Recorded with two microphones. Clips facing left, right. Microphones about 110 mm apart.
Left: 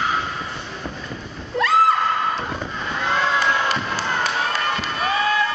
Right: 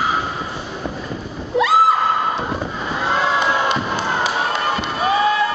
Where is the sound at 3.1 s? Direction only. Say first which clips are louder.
Right 2 dB; 30° right (ahead or behind).